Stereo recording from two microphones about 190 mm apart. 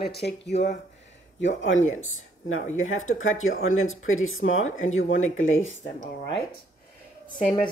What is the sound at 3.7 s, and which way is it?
Speech, 90° left.